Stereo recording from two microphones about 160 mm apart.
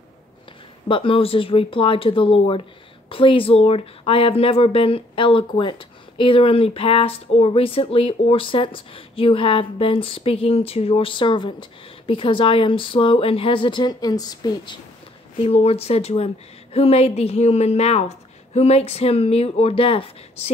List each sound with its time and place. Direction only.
0.8 s speech: 30° left (ahead or behind)
15.4 s speech: 40° left (ahead or behind)